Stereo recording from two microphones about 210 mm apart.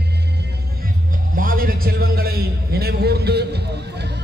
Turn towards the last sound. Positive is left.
turn(degrees=-50)  # may be behind; listen again after turning